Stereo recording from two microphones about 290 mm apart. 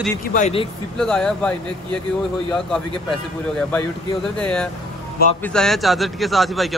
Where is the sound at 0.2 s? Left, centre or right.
Left.